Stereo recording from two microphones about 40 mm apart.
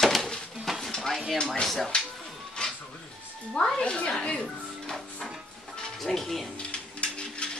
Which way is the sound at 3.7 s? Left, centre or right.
Left.